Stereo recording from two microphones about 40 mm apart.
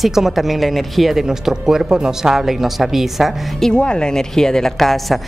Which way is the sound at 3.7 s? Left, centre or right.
Left.